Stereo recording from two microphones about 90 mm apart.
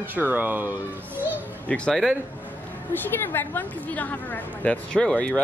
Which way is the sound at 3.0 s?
20° left (ahead or behind).